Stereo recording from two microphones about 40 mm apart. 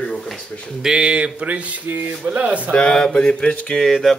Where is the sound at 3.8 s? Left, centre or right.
Centre.